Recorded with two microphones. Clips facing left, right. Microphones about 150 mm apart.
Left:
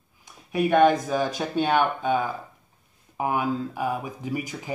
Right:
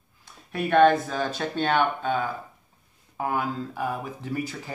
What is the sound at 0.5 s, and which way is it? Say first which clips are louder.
Speech: even; 15° left (ahead or behind).